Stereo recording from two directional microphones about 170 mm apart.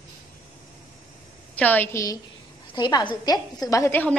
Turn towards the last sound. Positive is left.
turn(degrees=10)  # may be behind; listen again after turning